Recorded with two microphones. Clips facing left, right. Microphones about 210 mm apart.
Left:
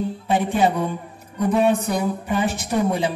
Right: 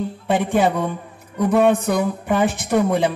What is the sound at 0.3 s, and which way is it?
Speech, 55° right (ahead or behind).